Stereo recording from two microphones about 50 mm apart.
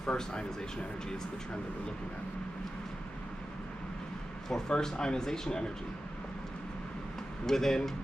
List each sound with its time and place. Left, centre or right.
0.0 s speech: centre
4.5 s speech: centre
7.4 s speech: centre